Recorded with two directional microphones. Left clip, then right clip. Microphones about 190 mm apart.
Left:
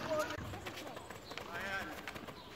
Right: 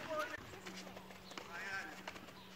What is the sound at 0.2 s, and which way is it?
Clip-clop, 45° left (ahead or behind).